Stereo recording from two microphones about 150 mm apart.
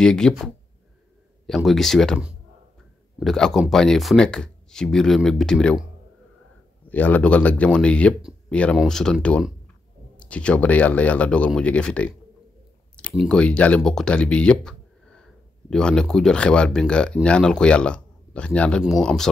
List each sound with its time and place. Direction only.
0.0 s speech: 5° left (ahead or behind)
6.9 s speech: 10° left (ahead or behind)
13.0 s a sound: 5° left (ahead or behind)
13.3 s speech: 5° left (ahead or behind)